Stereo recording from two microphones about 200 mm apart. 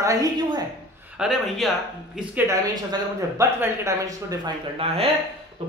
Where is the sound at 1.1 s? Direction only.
5° right (ahead or behind).